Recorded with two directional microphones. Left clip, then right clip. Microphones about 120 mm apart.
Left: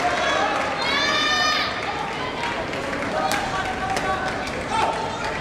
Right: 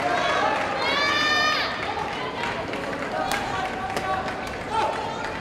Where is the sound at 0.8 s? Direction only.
15° left (ahead or behind).